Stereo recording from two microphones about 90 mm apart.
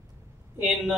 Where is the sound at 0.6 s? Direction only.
Centre (ahead or behind).